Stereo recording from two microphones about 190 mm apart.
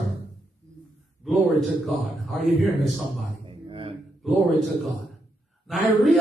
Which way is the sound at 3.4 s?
25° right (ahead or behind).